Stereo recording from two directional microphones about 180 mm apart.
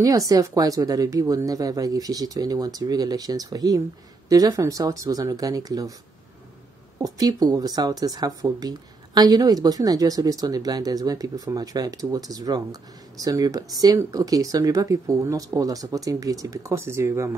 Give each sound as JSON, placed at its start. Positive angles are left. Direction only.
{"t": 0.0, "sound": "speech", "side_deg": -20}
{"t": 7.0, "sound": "speech", "side_deg": -20}